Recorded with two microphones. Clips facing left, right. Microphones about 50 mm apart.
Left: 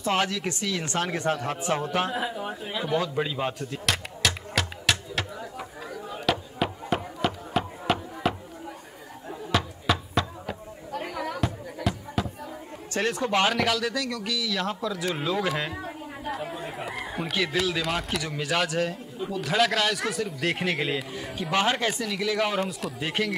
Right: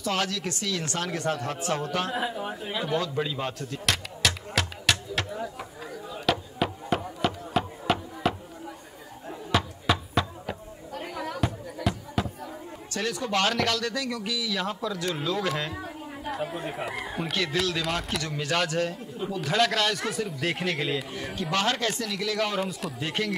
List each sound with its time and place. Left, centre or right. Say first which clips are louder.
0.0 s speech: left 3 dB; centre
3.2 s speech: left 2 dB; centre
4.2 s music: even; centre
6.3 s chop: even; centre
9.3 s a sound: even; centre
12.9 s a man's voice: left 4 dB; left
13.3 s speech: left 1 dB; centre
13.6 s a man's voice: left 2 dB; centre
16.3 s a man's voice: right 2 dB; centre
22.6 s a man's voice: left 1 dB; centre